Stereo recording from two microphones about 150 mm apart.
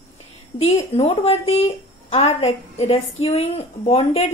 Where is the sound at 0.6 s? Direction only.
45° left (ahead or behind).